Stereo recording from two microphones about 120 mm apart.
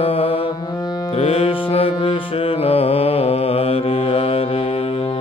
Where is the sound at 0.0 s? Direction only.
50° left (ahead or behind).